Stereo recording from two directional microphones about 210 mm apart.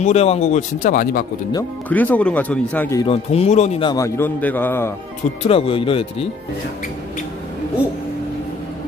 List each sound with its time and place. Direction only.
0.0 s a man's voice: 30° left (ahead or behind)
1.5 s speech: 10° left (ahead or behind)
3.0 s speech: 30° left (ahead or behind)
3.9 s speech: 10° left (ahead or behind)
5.4 s speech: 25° left (ahead or behind)